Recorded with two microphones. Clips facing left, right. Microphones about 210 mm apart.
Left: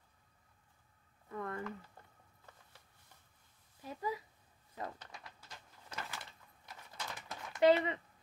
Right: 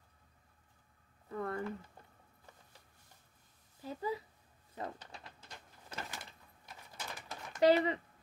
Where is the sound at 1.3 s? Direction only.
35° right (ahead or behind).